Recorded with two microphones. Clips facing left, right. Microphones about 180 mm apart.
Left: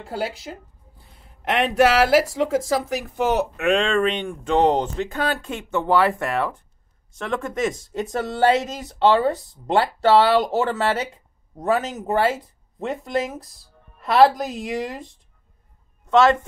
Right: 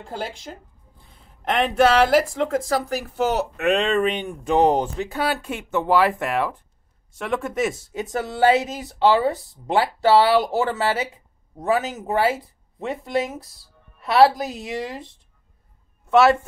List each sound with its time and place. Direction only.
0.0 s a woman's voice: 5° left (ahead or behind); by 16.3 s 10° right (ahead or behind)